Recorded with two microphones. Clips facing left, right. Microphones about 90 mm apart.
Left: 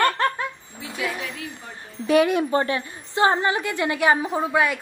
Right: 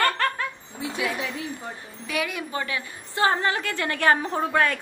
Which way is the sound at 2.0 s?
40° left (ahead or behind).